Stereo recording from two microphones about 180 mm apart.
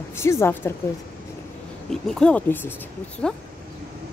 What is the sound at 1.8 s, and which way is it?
Speech, 5° left (ahead or behind).